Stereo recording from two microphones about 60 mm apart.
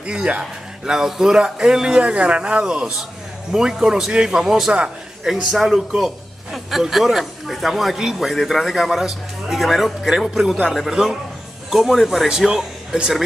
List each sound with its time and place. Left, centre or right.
0.0 s a man's voice: centre